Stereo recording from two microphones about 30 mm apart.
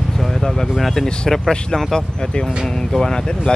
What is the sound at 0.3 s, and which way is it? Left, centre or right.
Vehicle, centre.